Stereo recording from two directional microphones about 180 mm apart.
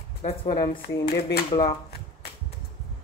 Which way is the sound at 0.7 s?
50° left (ahead or behind).